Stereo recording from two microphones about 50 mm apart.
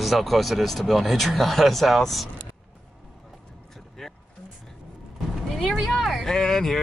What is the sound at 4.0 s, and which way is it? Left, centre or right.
Vehicle, centre.